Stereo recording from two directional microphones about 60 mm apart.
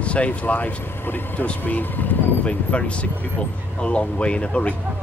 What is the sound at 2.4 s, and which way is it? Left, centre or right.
Speech, centre.